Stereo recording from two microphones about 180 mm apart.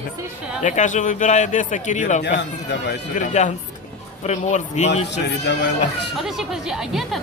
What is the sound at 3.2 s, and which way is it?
A man's voice, 45° left (ahead or behind).